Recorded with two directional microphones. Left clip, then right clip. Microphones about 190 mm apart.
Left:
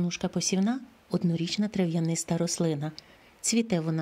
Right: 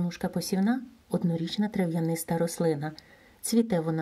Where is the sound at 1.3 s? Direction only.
45° left (ahead or behind).